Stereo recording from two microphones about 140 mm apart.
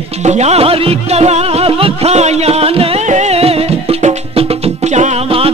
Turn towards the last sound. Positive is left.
turn(degrees=-45)  # may be behind; listen again after turning